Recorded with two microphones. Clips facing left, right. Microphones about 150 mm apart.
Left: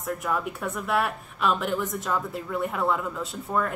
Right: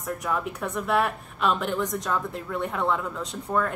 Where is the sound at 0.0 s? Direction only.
Centre (ahead or behind).